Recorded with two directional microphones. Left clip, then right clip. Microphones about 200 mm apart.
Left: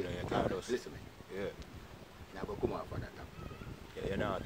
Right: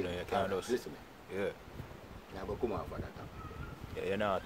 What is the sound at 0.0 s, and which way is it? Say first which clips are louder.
Speech: right 1 dB; 5° right (ahead or behind).